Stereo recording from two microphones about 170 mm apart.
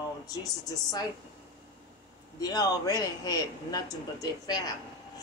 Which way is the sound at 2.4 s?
20° left (ahead or behind).